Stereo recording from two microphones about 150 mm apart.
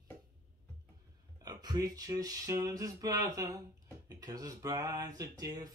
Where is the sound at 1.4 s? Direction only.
25° right (ahead or behind).